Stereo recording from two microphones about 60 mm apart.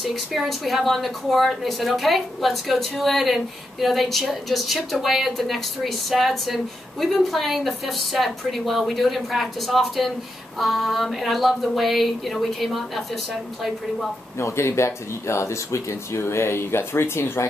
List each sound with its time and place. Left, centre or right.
0.0 s a woman's voice: centre
14.4 s speech: left